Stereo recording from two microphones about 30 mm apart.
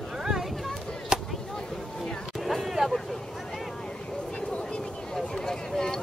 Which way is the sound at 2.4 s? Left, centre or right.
Centre.